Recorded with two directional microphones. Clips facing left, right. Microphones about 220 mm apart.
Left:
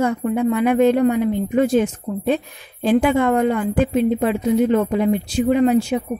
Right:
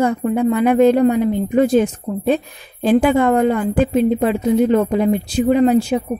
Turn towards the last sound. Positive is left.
turn(degrees=-35)  # may be behind; listen again after turning